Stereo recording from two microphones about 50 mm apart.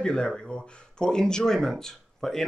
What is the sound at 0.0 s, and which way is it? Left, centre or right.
Speech, centre.